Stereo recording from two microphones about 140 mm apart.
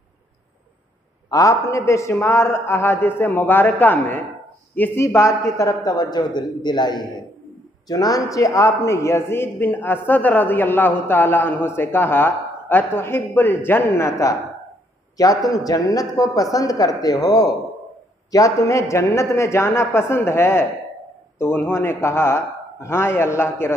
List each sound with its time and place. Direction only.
1.3 s a man's voice: 25° left (ahead or behind)